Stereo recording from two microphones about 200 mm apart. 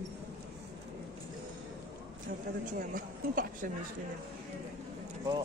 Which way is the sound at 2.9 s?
45° right (ahead or behind).